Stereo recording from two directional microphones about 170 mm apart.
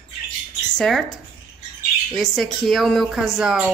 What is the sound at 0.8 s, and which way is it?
Speech, centre (ahead or behind).